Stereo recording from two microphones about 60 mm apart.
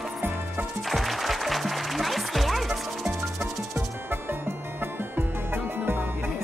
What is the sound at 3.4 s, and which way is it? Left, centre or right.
Music, right.